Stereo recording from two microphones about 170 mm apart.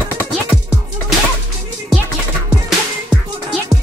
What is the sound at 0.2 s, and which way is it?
Music, 5° right (ahead or behind).